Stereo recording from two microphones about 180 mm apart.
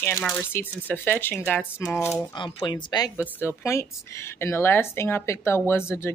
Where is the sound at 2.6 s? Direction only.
25° left (ahead or behind).